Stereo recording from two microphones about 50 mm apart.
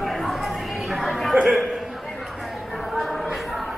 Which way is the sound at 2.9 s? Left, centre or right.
Centre.